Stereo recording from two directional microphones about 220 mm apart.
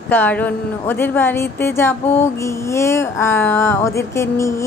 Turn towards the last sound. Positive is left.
turn(degrees=15)  # may be behind; listen again after turning